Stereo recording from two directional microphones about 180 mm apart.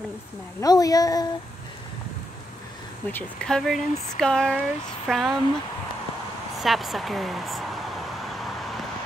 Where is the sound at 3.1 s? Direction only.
5° left (ahead or behind).